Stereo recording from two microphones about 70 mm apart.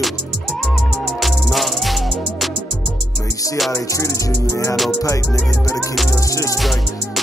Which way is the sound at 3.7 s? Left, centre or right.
Left.